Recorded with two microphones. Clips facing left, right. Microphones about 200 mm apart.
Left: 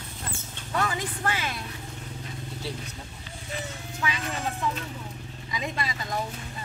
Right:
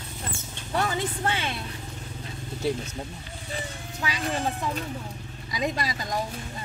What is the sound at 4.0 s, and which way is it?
Speech, 35° right (ahead or behind).